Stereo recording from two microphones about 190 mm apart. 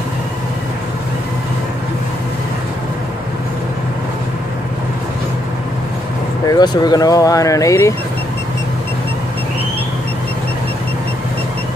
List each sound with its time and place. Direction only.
6.5 s speech: 20° left (ahead or behind)